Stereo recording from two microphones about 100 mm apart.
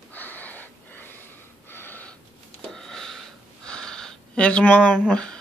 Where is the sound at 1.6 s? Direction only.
20° left (ahead or behind).